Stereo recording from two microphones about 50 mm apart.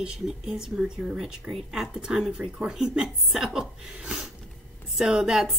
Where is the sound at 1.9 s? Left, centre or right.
Centre.